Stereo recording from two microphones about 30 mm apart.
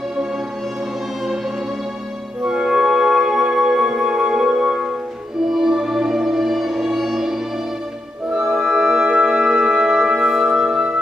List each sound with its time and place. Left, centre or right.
2.4 s music: right
5.5 s music: centre
8.4 s music: centre
9.0 s music: right
9.3 s music: centre